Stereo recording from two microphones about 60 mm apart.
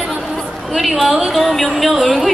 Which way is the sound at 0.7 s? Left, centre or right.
Centre.